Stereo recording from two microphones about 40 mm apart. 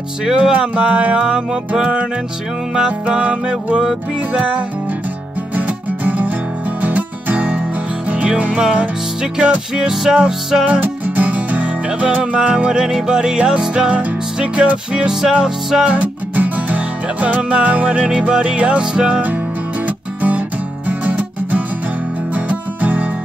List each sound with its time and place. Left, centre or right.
0.2 s music: right
2.7 s music: right
7.3 s music: right
9.8 s music: centre
10.7 s music: right
12.8 s music: centre
15.0 s music: centre
15.9 s music: right
20.2 s music: right